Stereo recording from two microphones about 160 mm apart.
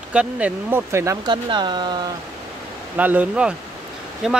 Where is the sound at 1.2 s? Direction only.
30° right (ahead or behind).